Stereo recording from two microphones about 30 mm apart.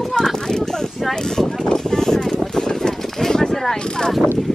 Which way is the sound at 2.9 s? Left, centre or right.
Centre.